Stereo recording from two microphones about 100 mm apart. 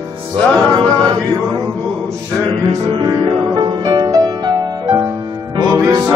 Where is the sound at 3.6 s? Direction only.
45° right (ahead or behind).